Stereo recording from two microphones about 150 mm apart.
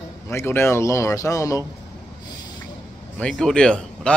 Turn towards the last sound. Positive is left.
turn(degrees=5)  # may be behind; listen again after turning